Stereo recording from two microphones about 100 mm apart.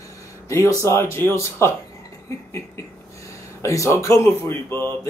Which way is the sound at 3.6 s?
30° left (ahead or behind).